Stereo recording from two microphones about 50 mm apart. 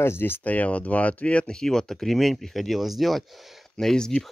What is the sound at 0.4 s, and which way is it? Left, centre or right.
Speech, left.